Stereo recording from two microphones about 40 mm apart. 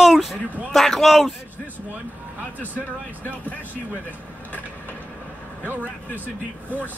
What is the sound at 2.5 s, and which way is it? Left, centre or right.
Speech, left.